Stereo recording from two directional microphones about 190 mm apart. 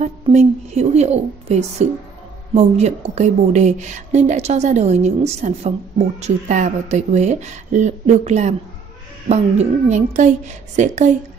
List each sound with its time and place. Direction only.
0.0 s a woman's voice: 35° right (ahead or behind)